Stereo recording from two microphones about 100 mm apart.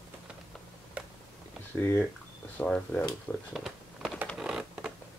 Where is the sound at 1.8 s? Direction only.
20° left (ahead or behind).